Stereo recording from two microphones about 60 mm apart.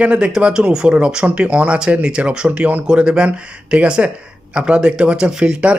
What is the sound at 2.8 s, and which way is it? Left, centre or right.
Speech, centre.